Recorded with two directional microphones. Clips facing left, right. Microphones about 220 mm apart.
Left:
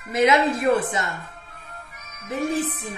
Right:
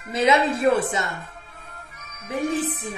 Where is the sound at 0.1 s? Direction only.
30° right (ahead or behind).